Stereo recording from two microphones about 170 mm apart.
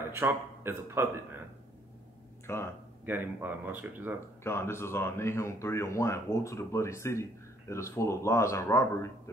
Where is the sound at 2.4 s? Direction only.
15° left (ahead or behind).